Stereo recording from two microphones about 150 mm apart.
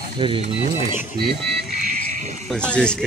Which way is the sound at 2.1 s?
50° right (ahead or behind).